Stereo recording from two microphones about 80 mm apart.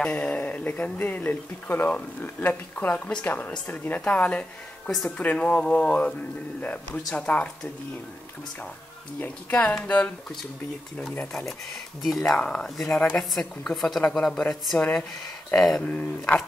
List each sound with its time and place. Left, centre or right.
0.0 s speech: centre
9.2 s speech: centre
12.0 s a woman's voice: centre
15.8 s speech: centre